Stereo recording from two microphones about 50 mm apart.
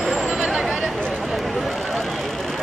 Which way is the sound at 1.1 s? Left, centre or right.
Centre.